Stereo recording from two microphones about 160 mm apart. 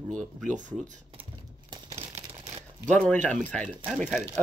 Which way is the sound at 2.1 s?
45° right (ahead or behind).